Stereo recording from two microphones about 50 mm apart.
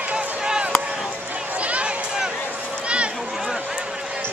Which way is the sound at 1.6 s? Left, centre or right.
Right.